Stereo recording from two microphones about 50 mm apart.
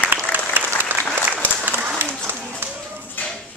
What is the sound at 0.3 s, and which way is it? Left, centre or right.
Applause, right.